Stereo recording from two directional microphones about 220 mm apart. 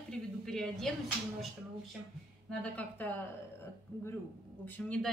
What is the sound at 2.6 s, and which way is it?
Speech, 5° left (ahead or behind).